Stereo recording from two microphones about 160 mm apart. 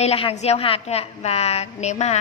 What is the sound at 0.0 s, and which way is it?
A woman's voice, 40° left (ahead or behind).